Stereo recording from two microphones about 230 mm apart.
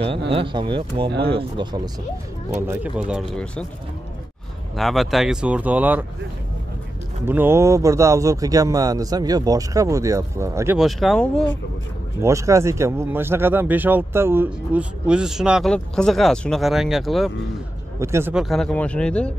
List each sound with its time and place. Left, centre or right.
0.3 s speech: right
2.6 s speech: centre
4.7 s speech: centre
7.2 s speech: centre
10.8 s speech: centre
12.2 s speech: centre
17.9 s speech: centre